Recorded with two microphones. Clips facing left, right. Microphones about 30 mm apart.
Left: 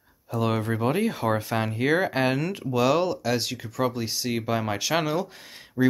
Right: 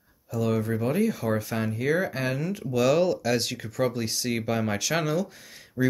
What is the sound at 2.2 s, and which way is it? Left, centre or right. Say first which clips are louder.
Speech: left 4 dB; left.